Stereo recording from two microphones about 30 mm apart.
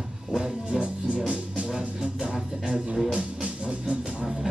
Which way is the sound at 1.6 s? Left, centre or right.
Right.